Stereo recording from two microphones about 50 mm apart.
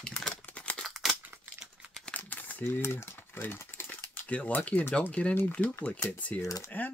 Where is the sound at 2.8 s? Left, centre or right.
Left.